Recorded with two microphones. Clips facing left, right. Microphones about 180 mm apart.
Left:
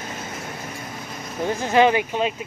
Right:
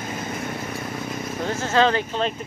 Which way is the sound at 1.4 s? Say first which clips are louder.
Left 3 dB; 15° left (ahead or behind).